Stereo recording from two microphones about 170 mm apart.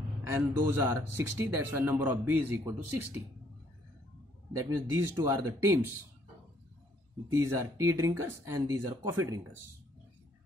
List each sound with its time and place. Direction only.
0.2 s speech: 15° right (ahead or behind)
4.5 s speech: 20° right (ahead or behind)
7.5 s speech: 15° right (ahead or behind)